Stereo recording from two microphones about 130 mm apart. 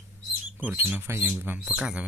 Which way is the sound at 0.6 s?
15° right (ahead or behind).